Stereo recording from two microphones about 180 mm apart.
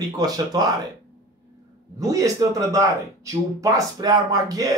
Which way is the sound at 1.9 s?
20° right (ahead or behind).